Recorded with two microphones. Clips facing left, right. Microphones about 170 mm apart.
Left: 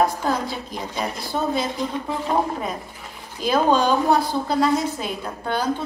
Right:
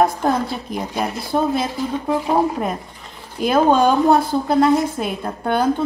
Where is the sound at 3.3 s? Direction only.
55° right (ahead or behind).